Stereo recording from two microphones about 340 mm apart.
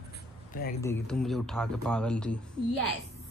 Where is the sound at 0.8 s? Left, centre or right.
Centre.